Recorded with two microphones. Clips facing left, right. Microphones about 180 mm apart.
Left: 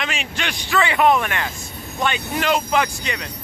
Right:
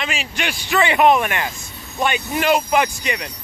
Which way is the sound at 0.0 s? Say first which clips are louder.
Right 1 dB; centre (ahead or behind).